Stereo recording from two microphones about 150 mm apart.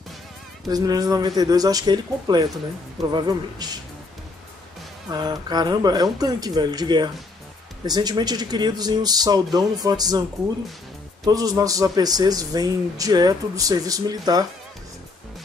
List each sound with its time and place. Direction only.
0.7 s a man's voice: 25° right (ahead or behind)
5.1 s a man's voice: 25° right (ahead or behind)
11.2 s a man's voice: 25° right (ahead or behind)